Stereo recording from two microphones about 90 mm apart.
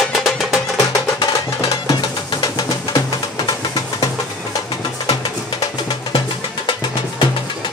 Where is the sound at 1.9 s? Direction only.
50° left (ahead or behind).